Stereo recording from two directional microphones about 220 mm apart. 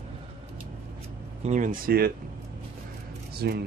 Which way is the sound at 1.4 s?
35° right (ahead or behind).